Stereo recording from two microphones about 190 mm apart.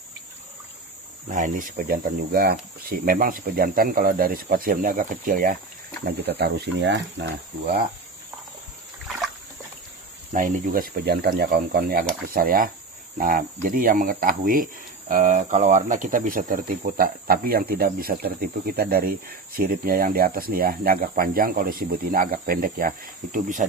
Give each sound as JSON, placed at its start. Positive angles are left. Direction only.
{"t": 1.3, "sound": "speech", "side_deg": -45}
{"t": 10.3, "sound": "speech", "side_deg": -45}